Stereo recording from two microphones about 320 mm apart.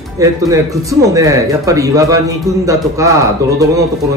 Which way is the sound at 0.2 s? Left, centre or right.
Centre.